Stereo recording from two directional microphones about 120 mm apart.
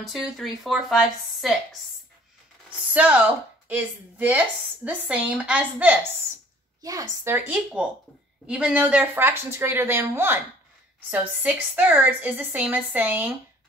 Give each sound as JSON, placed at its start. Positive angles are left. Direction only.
{"t": 0.0, "sound": "speech", "side_deg": 0}
{"t": 2.9, "sound": "a woman's voice", "side_deg": -10}
{"t": 6.8, "sound": "a woman's voice", "side_deg": -30}
{"t": 7.3, "sound": "a woman's voice", "side_deg": -10}